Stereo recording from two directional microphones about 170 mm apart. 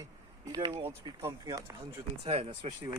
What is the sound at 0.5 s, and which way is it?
Speech, 25° right (ahead or behind).